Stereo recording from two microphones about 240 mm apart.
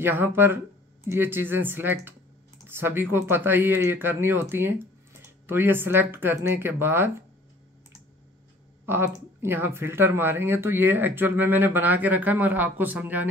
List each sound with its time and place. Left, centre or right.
0.0 s speech: centre
8.8 s speech: centre